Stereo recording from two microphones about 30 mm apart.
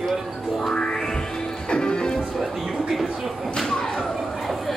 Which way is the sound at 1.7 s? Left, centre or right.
Left.